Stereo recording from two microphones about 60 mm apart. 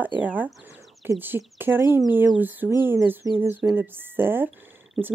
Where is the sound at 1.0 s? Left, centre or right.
Right.